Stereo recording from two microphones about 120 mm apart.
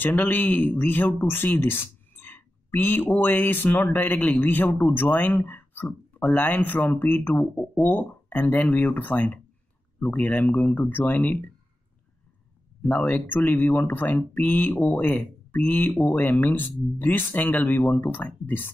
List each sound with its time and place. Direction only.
0.0 s speech: 15° left (ahead or behind)
12.8 s speech: 15° left (ahead or behind)